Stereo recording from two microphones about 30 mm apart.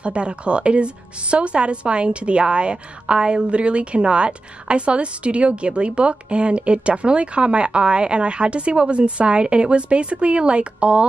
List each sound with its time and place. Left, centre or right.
0.0 s a woman's voice: right